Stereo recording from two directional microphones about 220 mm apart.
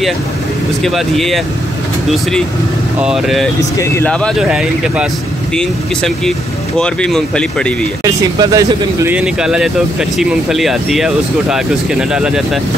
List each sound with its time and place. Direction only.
0.8 s speech: centre (ahead or behind)
3.0 s speech: centre (ahead or behind)
3.7 s speech: 10° left (ahead or behind)
8.0 s speech: 15° right (ahead or behind)